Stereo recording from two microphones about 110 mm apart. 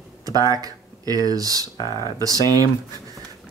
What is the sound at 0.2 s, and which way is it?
Speech, 35° right (ahead or behind).